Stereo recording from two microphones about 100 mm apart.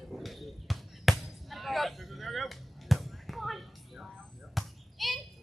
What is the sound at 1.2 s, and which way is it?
Music, centre (ahead or behind).